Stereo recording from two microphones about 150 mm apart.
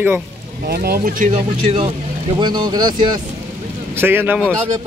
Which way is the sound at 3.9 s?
15° right (ahead or behind).